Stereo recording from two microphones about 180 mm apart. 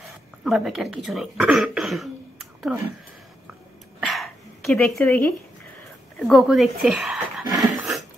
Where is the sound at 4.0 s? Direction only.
Centre (ahead or behind).